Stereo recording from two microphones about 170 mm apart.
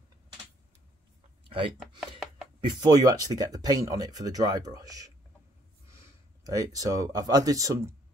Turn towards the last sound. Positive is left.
turn(degrees=-20)  # may be behind; listen again after turning